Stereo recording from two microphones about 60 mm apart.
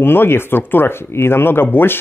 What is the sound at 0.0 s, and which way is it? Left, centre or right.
Speech, left.